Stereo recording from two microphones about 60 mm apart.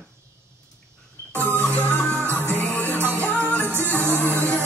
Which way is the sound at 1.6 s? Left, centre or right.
Left.